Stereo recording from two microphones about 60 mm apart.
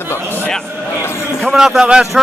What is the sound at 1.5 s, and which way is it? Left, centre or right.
Speech, centre.